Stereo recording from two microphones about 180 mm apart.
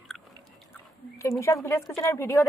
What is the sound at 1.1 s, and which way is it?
Speech, 15° left (ahead or behind).